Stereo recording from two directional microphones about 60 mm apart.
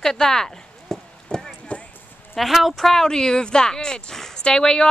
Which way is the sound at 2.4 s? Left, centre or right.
Centre.